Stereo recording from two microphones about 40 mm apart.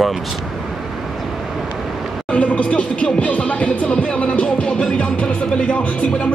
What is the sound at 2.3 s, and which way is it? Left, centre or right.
Speech, left.